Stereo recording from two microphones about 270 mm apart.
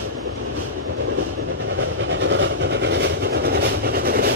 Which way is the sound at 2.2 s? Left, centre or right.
Right.